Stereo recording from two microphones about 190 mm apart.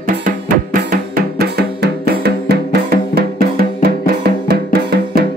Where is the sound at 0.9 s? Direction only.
55° right (ahead or behind).